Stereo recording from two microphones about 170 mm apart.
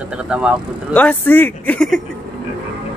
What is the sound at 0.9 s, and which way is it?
Speech, 10° left (ahead or behind).